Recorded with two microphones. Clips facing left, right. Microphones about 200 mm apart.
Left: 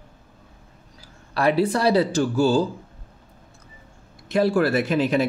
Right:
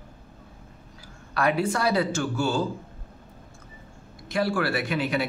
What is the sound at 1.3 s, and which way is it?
Speech, 35° left (ahead or behind).